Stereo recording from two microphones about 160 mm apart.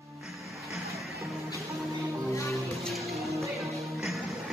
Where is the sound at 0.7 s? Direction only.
Centre (ahead or behind).